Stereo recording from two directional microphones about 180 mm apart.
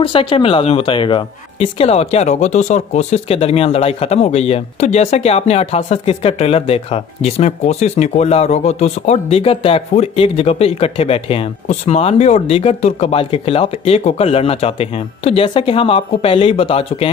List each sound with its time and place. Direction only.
0.0 s a woman's voice: 30° left (ahead or behind)